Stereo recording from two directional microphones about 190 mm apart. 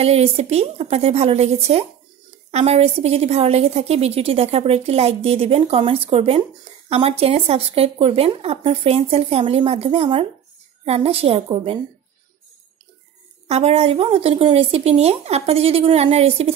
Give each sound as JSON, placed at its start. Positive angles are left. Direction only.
{"t": 0.0, "sound": "a woman's voice", "side_deg": -35}
{"t": 13.5, "sound": "a woman's voice", "side_deg": -30}